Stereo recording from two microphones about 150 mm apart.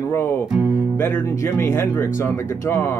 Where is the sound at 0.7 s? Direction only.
15° left (ahead or behind).